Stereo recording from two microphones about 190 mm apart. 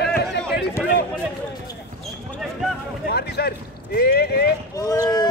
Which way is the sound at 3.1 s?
55° left (ahead or behind).